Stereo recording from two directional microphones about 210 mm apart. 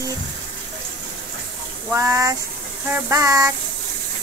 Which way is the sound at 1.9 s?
15° right (ahead or behind).